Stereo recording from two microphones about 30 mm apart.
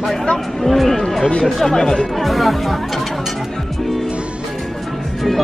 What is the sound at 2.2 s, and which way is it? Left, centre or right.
Speech, centre.